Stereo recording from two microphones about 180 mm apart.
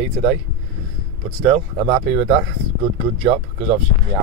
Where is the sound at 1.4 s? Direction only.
30° right (ahead or behind).